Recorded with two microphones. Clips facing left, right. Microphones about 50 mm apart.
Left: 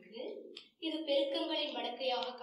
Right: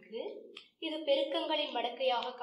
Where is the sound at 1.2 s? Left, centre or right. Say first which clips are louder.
Right 2 dB; right.